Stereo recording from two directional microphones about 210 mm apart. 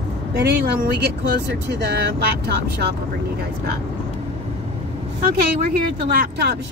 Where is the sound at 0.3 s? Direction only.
50° right (ahead or behind).